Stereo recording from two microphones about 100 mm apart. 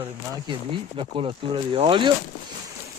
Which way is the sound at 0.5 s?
60° right (ahead or behind).